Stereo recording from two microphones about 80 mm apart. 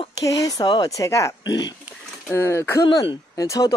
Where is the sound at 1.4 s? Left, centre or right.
Left.